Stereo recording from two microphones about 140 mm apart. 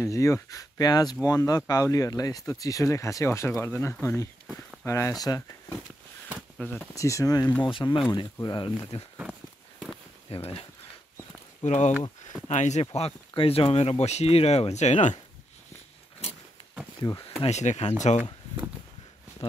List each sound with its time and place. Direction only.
0.0 s speech: 20° left (ahead or behind)
6.6 s speech: 10° left (ahead or behind)
7.0 s speech: 25° left (ahead or behind)
10.3 s speech: 40° left (ahead or behind)
11.6 s speech: 55° left (ahead or behind)
13.3 s speech: 40° left (ahead or behind)
17.3 s speech: 50° left (ahead or behind)